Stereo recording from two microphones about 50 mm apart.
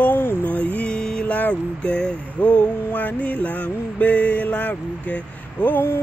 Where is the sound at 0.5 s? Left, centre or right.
Left.